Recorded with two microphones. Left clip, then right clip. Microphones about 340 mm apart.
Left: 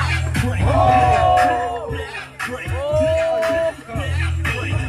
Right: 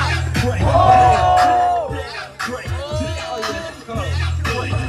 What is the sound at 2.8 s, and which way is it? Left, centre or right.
Music, centre.